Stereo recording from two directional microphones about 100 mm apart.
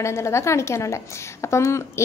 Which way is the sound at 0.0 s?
30° left (ahead or behind).